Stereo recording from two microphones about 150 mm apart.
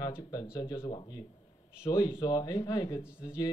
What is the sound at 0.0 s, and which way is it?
Speech, 25° left (ahead or behind).